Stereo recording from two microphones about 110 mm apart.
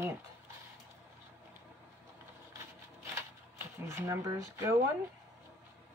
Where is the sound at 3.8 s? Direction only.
25° right (ahead or behind).